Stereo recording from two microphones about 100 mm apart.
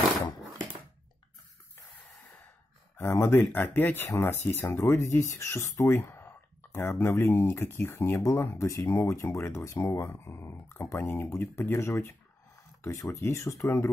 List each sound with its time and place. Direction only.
3.0 s speech: 30° left (ahead or behind)
13.1 s speech: 30° left (ahead or behind)